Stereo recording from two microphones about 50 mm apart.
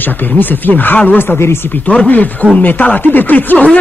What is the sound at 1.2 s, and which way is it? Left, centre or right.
Speech, left.